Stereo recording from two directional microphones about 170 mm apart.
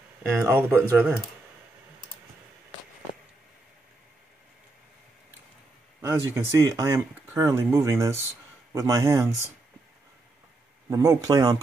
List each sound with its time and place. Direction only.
0.4 s speech: 10° right (ahead or behind)
5.9 s speech: 15° right (ahead or behind)
10.9 s speech: 20° right (ahead or behind)